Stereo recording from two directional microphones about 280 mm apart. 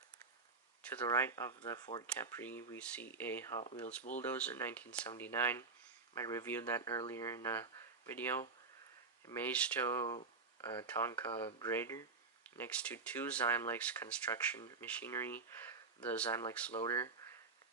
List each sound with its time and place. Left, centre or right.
0.8 s speech: centre
3.6 s speech: left
4.2 s speech: centre